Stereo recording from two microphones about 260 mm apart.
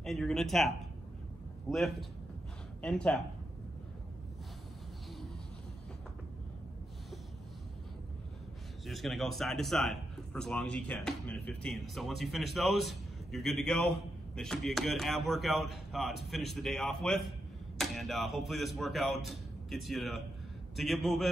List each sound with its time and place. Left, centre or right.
0.0 s a man's voice: centre
8.8 s a man's voice: centre